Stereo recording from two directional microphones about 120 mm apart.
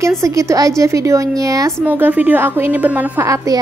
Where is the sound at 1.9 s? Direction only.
15° right (ahead or behind).